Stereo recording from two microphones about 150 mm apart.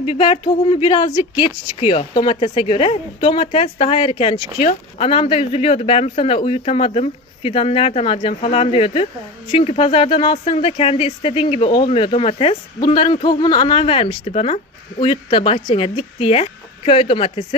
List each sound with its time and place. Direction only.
0.0 s speech: 40° left (ahead or behind)